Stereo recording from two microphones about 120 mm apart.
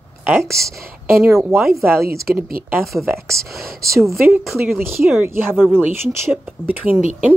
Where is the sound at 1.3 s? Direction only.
20° right (ahead or behind).